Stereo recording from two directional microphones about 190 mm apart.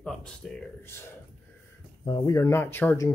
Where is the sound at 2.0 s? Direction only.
20° left (ahead or behind).